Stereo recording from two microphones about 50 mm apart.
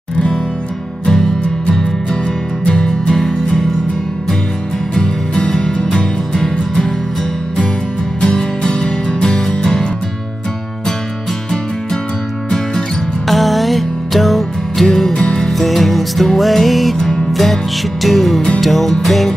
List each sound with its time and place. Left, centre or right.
2.6 s music: centre
3.2 s music: centre
4.9 s music: centre
8.2 s music: centre
13.3 s music: centre
15.1 s music: centre
15.5 s music: centre